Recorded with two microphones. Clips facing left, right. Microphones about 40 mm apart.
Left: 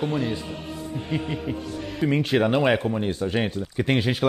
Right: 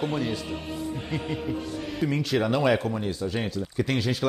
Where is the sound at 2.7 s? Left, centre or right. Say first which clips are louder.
Left 3 dB; centre.